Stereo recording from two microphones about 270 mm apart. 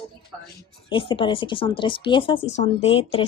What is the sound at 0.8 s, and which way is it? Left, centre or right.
Speech, centre.